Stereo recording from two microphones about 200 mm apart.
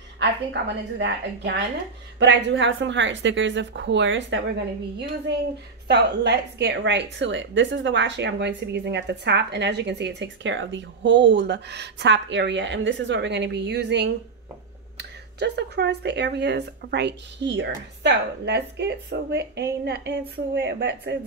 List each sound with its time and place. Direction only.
0.2 s a woman's voice: 60° right (ahead or behind)
5.9 s a woman's voice: 55° right (ahead or behind)